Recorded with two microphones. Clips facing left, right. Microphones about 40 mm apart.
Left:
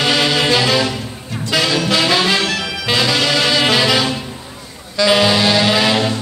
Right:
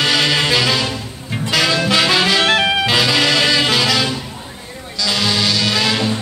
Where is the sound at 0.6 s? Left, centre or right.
Centre.